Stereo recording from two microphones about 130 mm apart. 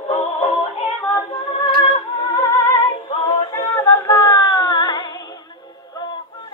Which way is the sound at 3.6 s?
20° left (ahead or behind).